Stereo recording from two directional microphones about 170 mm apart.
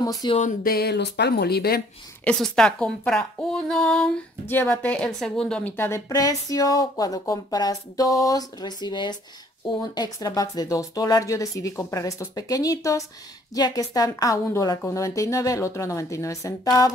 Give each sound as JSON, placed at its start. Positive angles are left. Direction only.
{"t": 0.0, "sound": "a sound", "side_deg": 20}
{"t": 0.4, "sound": "music", "side_deg": 45}
{"t": 0.7, "sound": "speech", "side_deg": 75}
{"t": 2.2, "sound": "a woman's voice", "side_deg": 5}